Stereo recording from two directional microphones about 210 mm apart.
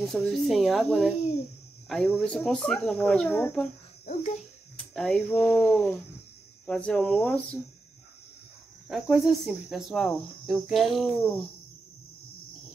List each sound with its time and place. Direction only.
0.0 s cricket: centre (ahead or behind)
4.0 s a child's voice: 30° left (ahead or behind)
4.9 s speech: 5° left (ahead or behind)
6.6 s cricket: 5° left (ahead or behind)
8.8 s cricket: centre (ahead or behind)